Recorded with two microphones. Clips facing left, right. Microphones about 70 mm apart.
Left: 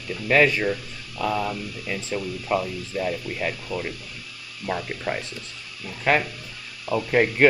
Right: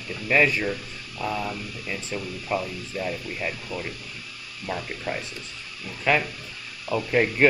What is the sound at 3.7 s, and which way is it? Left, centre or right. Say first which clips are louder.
Speech: left 3 dB; right.